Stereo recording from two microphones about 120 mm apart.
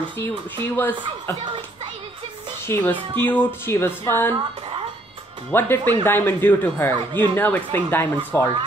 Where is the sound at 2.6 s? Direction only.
20° left (ahead or behind).